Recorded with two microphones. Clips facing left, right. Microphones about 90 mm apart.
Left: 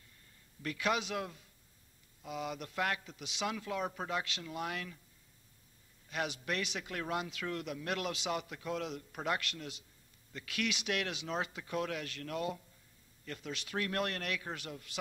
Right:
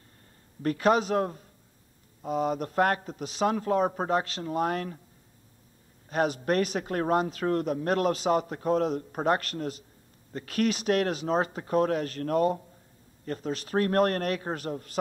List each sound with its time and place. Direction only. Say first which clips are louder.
0.6 s speech: right 11 dB; 40° right (ahead or behind)
6.0 s speech: right 11 dB; 40° right (ahead or behind)